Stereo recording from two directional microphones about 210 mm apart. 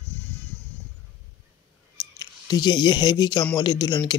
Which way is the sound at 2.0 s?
20° left (ahead or behind).